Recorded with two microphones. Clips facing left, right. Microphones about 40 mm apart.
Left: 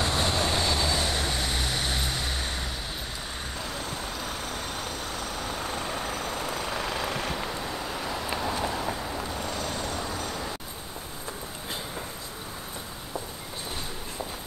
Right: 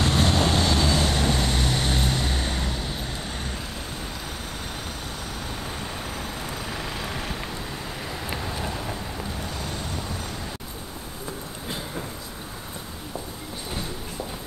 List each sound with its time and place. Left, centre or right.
0.0 s vehicle: right
1.0 s vehicle: centre
6.5 s vehicle: centre